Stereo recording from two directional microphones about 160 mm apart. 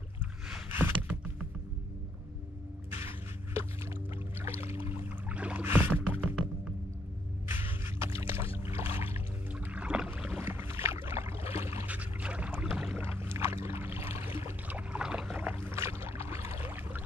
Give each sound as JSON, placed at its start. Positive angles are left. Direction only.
{"t": 0.7, "sound": "a sound", "side_deg": -15}
{"t": 2.9, "sound": "a sound", "side_deg": -15}
{"t": 4.6, "sound": "boat", "side_deg": -15}
{"t": 7.4, "sound": "music", "side_deg": -15}
{"t": 8.5, "sound": "rowboat", "side_deg": -15}
{"t": 9.1, "sound": "boat", "side_deg": -10}